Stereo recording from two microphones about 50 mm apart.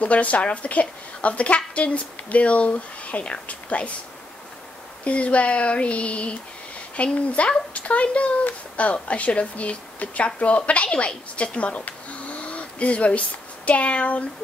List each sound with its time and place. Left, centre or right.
0.0 s speech: left
5.0 s speech: left
12.4 s a sound: left
13.7 s speech: left